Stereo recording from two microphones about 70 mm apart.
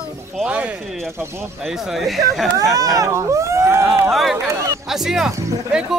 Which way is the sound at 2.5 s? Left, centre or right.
Right.